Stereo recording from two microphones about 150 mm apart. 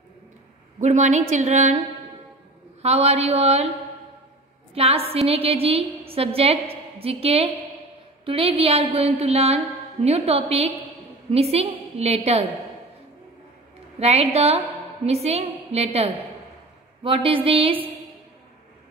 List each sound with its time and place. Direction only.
0.7 s a woman's voice: 50° right (ahead or behind)
2.8 s a woman's voice: 45° right (ahead or behind)
4.7 s a woman's voice: 40° right (ahead or behind)
13.9 s a woman's voice: 45° right (ahead or behind)